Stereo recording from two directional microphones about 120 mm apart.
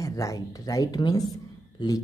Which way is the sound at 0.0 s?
30° left (ahead or behind).